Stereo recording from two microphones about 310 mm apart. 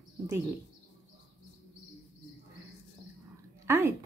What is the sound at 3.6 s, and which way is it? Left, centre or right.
Dog, centre.